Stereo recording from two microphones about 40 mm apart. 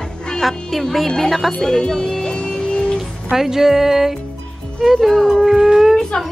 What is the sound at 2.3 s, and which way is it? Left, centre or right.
Music, left.